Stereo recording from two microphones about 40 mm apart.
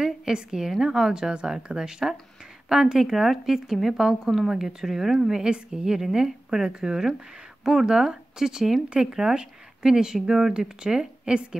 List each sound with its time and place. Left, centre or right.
0.0 s a woman's voice: centre
5.4 s speech: centre
8.8 s speech: right